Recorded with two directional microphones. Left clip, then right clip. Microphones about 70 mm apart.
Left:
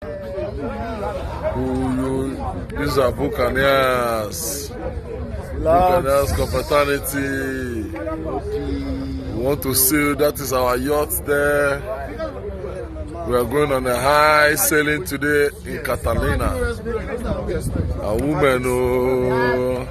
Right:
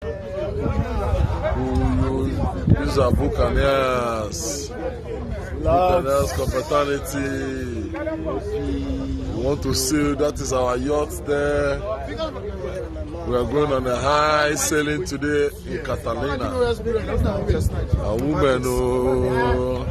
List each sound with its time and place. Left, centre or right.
2.8 s a man's voice: left
5.7 s speech: left
9.4 s speech: left
13.3 s speech: left
14.8 s a man's voice: centre
15.9 s speech: left
18.1 s speech: centre
19.3 s a man's voice: left